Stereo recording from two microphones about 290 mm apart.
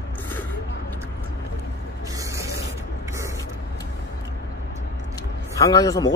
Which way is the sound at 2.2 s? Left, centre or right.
Centre.